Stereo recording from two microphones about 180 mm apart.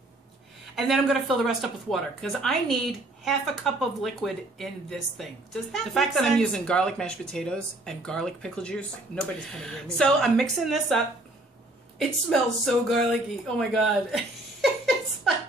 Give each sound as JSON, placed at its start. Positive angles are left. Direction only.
{"t": 0.7, "sound": "speech", "side_deg": 0}
{"t": 12.3, "sound": "speech", "side_deg": 0}
{"t": 13.6, "sound": "a sound", "side_deg": 0}